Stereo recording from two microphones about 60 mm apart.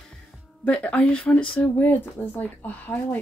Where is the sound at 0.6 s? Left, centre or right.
Left.